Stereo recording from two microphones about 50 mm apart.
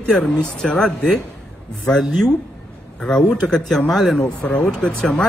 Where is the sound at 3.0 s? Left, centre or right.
Centre.